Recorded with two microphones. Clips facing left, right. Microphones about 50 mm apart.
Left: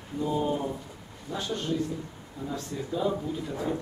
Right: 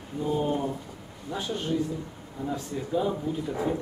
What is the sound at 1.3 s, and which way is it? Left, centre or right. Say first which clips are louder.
Speech: right 1 dB; centre.